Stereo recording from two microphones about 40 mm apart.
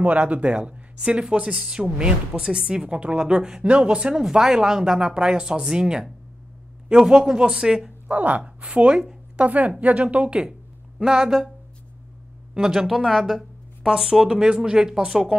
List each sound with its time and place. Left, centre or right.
0.0 s speech: right
4.1 s speech: centre
8.1 s a woman's voice: right
11.0 s speech: centre
12.5 s speech: centre
13.8 s speech: centre